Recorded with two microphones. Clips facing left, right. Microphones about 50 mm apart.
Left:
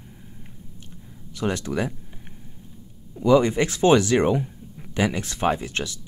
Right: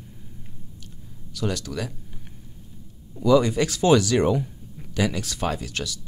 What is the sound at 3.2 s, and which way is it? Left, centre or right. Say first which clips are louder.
Speech: left 1 dB; left.